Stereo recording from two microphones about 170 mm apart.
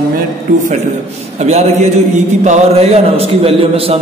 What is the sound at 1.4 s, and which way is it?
A man's voice, 40° right (ahead or behind).